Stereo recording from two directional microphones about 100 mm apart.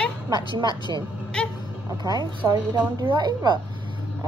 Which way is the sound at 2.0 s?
40° right (ahead or behind).